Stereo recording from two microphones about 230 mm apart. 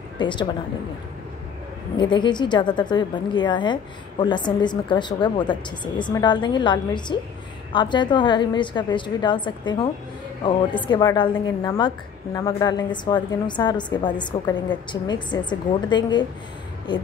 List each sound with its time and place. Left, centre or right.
0.2 s a woman's voice: centre
2.0 s a woman's voice: centre